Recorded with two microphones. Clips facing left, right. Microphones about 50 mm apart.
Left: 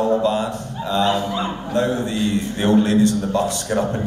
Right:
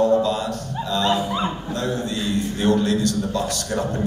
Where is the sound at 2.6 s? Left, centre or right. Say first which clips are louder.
Left 4 dB; left.